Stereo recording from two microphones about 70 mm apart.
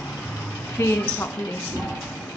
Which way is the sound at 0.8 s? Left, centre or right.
Left.